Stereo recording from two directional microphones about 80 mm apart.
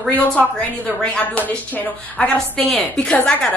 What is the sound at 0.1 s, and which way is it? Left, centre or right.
A woman's voice, centre.